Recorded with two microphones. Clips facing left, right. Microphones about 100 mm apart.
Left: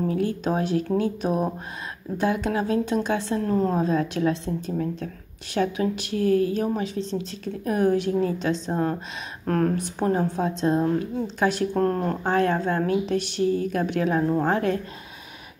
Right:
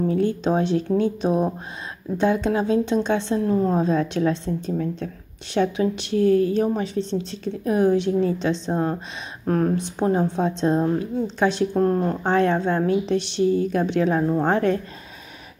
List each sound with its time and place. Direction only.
0.1 s a woman's voice: 25° right (ahead or behind)
11.7 s speech: 15° right (ahead or behind)
12.3 s a woman's voice: 25° right (ahead or behind)